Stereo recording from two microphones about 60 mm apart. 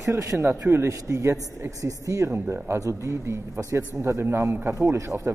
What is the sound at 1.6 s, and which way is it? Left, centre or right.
Speech, right.